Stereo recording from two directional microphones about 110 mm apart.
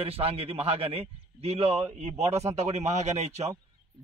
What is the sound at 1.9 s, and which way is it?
Speech, 80° right.